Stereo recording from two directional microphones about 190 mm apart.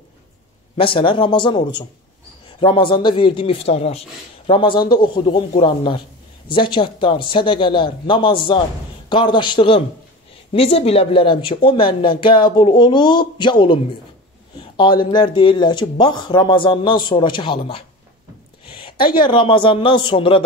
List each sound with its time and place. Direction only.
0.7 s speech: 25° left (ahead or behind)
14.6 s a sound: 25° left (ahead or behind)
15.0 s speech: 25° left (ahead or behind)